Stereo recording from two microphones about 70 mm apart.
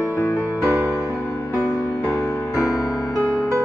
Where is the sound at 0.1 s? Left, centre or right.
Left.